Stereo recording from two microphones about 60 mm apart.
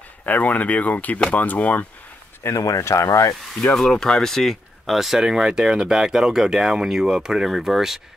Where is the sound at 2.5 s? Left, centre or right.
Left.